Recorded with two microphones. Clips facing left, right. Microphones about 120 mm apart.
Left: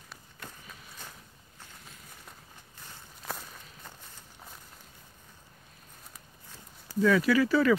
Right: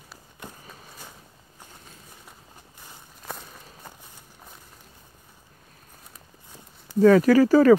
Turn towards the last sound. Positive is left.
turn(degrees=-40)  # may be behind; listen again after turning